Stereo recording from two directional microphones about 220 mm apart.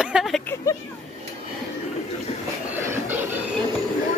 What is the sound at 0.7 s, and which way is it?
Speech, 15° left (ahead or behind).